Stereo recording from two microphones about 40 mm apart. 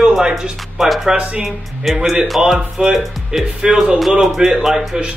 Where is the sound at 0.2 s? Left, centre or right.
Centre.